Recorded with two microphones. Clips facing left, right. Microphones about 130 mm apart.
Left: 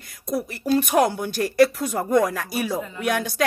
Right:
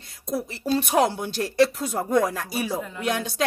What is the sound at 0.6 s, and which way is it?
Speech, 25° right (ahead or behind).